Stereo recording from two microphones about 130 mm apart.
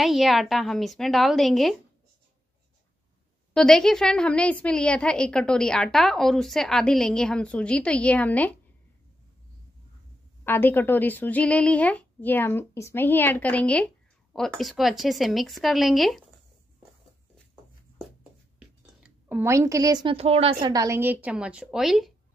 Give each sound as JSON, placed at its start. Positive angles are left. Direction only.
{"t": 0.0, "sound": "a woman's voice", "side_deg": 0}
{"t": 3.5, "sound": "a woman's voice", "side_deg": 5}
{"t": 10.4, "sound": "a woman's voice", "side_deg": 15}
{"t": 19.0, "sound": "a woman's voice", "side_deg": -15}
{"t": 20.2, "sound": "a woman's voice", "side_deg": -50}
{"t": 20.6, "sound": "a woman's voice", "side_deg": -25}